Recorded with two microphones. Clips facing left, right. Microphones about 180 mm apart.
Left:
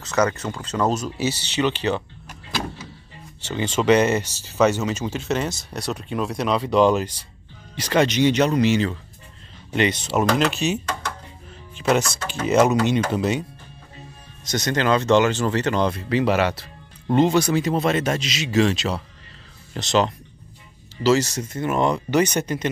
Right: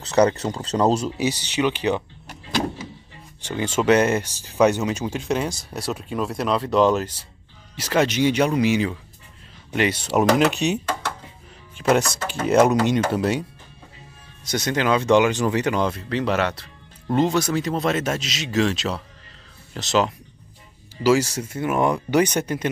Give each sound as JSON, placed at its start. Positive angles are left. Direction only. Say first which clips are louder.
{"t": 0.0, "sound": "speech", "louder": "right 4 dB", "side_deg": -35}
{"t": 1.1, "sound": "speech", "louder": "right 1 dB", "side_deg": -15}
{"t": 3.4, "sound": "speech", "louder": "even", "side_deg": -10}
{"t": 14.4, "sound": "speech", "louder": "even", "side_deg": -10}
{"t": 16.1, "sound": "speech", "louder": "left 3 dB", "side_deg": 5}